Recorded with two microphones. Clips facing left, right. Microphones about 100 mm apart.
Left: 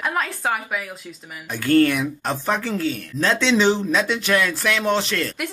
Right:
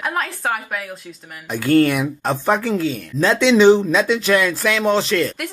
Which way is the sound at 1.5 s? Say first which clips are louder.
Right 2 dB; 15° right (ahead or behind).